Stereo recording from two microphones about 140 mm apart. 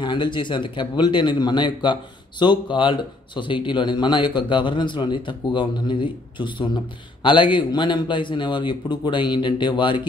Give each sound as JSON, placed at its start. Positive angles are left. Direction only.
{"t": 0.0, "sound": "a man's voice", "side_deg": 35}